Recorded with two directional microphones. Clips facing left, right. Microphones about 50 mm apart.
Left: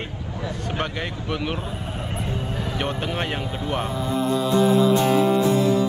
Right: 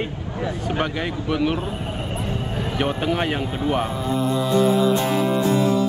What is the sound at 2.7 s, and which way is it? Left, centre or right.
Speech, centre.